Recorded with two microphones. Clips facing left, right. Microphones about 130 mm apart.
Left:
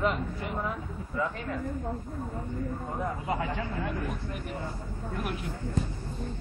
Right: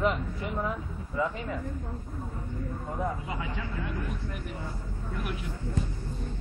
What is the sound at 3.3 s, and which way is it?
Speech, 50° left (ahead or behind).